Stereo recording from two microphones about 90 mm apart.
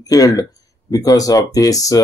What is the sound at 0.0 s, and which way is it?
A man's voice, 45° left (ahead or behind).